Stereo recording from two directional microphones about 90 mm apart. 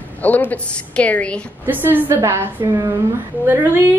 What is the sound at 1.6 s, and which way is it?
A woman's voice, 20° right (ahead or behind).